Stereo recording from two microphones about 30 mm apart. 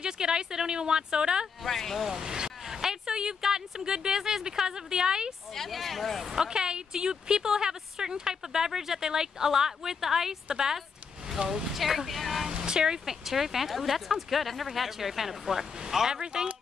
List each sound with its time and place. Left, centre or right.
0.0 s a woman's voice: right
1.6 s speech: centre
2.0 s a woman's voice: right
2.6 s a sound: centre
3.4 s speech: centre
3.8 s a woman's voice: right
5.7 s speech: centre
6.2 s a woman's voice: right
11.4 s speech: right
11.7 s speech: centre
12.7 s a woman's voice: right
13.1 s speech: centre